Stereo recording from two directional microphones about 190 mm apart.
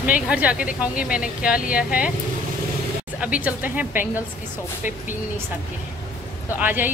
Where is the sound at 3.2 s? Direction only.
5° right (ahead or behind).